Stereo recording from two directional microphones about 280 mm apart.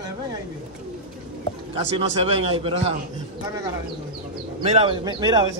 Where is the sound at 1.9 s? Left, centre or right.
Right.